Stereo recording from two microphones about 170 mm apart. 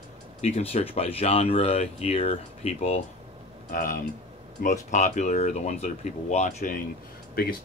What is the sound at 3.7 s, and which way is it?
Speech, 55° left (ahead or behind).